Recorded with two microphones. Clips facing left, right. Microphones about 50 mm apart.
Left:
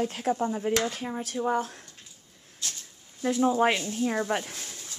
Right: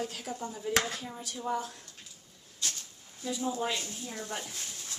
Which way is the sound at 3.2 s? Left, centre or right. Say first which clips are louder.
Left 10 dB; left.